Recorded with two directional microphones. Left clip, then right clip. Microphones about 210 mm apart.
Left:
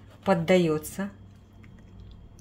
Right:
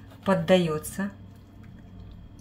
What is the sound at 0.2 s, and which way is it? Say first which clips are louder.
Speech: even; 35° left (ahead or behind).